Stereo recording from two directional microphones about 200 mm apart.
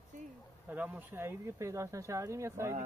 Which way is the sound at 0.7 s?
10° right (ahead or behind).